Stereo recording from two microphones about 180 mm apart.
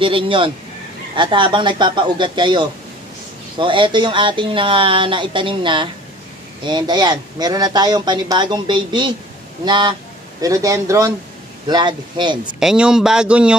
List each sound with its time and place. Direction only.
0.0 s speech: 30° right (ahead or behind)
12.5 s speech: 5° right (ahead or behind)